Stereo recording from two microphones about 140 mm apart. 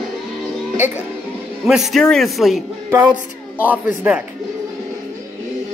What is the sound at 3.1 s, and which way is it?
A woman's voice, 10° right (ahead or behind).